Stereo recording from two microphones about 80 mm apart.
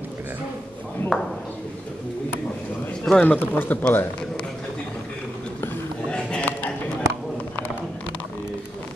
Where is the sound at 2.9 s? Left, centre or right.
Centre.